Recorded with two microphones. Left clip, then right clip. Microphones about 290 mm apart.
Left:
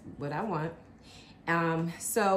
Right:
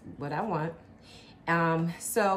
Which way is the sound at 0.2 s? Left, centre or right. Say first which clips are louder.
Right 2 dB; centre.